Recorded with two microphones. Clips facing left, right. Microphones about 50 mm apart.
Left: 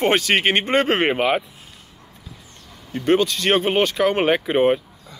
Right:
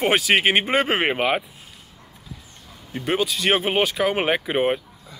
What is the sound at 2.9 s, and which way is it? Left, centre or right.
Speech, centre.